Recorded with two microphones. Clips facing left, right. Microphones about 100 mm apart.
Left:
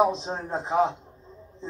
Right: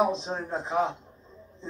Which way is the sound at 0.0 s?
20° left (ahead or behind).